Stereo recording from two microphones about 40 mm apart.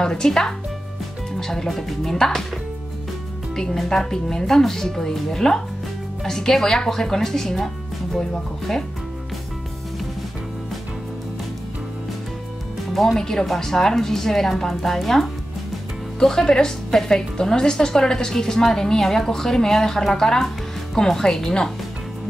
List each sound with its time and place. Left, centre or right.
0.0 s a woman's voice: centre
12.9 s a woman's voice: centre